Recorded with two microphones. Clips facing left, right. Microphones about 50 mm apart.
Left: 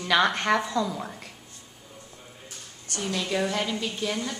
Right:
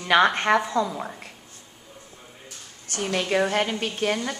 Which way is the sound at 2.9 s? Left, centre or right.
Right.